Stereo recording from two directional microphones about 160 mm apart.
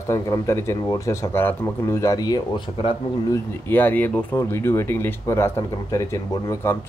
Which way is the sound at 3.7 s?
10° left (ahead or behind).